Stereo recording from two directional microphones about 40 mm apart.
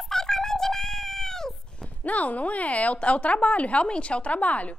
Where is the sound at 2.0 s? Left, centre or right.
Left.